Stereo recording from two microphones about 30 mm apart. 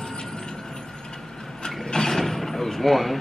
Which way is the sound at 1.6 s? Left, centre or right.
Centre.